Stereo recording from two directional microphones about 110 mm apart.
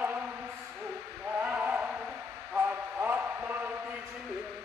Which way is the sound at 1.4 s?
15° right (ahead or behind).